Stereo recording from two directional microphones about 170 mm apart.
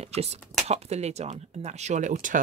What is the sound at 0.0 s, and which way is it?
Speech, 40° right (ahead or behind).